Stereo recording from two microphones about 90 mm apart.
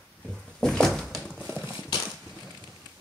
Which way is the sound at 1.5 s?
55° left (ahead or behind).